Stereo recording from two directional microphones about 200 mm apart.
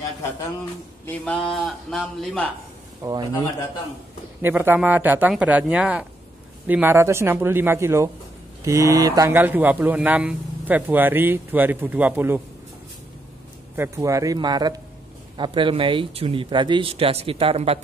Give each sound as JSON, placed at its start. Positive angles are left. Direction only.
{"t": 1.0, "sound": "a man's voice", "side_deg": 5}
{"t": 3.0, "sound": "speech", "side_deg": -20}
{"t": 4.4, "sound": "speech", "side_deg": -10}
{"t": 13.7, "sound": "speech", "side_deg": -15}